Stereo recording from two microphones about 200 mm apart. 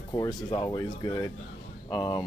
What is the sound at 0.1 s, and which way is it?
A man's voice, 20° left (ahead or behind).